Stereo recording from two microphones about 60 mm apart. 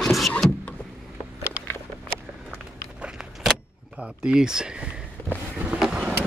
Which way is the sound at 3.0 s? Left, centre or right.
Centre.